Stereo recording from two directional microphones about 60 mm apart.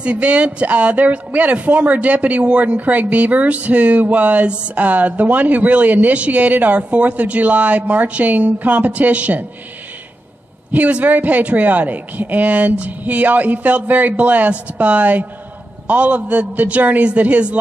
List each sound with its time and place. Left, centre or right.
0.0 s speech: centre
10.7 s speech: right